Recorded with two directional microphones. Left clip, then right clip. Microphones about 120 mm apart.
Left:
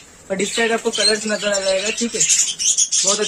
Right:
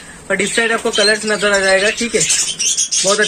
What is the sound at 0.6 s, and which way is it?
Speech, 10° left (ahead or behind).